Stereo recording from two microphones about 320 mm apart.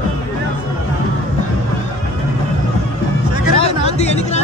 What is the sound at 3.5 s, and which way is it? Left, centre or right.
Chatter, centre.